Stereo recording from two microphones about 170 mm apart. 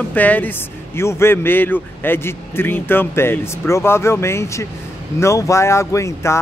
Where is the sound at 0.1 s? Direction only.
10° left (ahead or behind).